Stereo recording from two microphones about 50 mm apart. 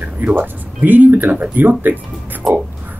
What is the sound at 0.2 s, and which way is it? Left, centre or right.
Speech, right.